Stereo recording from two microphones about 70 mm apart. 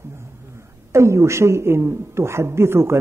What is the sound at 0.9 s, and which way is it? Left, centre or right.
A man's voice, right.